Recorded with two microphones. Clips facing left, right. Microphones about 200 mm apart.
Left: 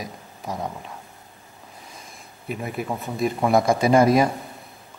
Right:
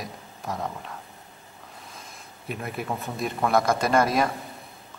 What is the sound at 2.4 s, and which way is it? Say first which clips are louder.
A man's voice: left 3 dB; centre (ahead or behind).